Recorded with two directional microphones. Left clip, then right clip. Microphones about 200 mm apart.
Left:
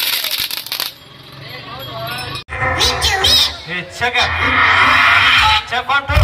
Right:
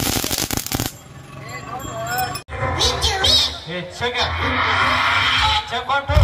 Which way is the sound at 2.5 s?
60° right (ahead or behind).